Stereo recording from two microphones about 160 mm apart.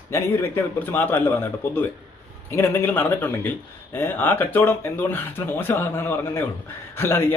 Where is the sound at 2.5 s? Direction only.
15° left (ahead or behind).